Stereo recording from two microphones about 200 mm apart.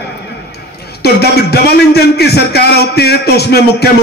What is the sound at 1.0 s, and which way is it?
A man's voice, 55° left (ahead or behind).